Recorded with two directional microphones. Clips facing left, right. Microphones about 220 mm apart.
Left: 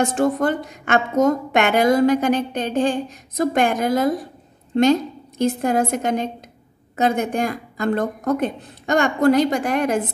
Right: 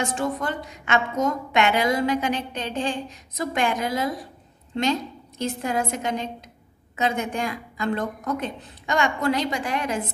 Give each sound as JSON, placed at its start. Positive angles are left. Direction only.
{"t": 0.0, "sound": "a woman's voice", "side_deg": 50}
{"t": 5.4, "sound": "a woman's voice", "side_deg": 50}